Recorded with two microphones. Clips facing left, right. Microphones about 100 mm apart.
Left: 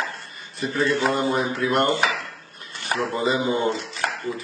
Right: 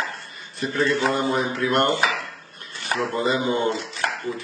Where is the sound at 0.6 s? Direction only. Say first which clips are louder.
Even; centre (ahead or behind).